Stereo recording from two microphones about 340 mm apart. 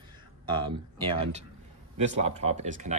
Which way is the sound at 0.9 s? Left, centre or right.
Centre.